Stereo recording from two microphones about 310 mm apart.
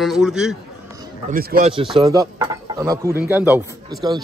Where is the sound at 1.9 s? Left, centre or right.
Centre.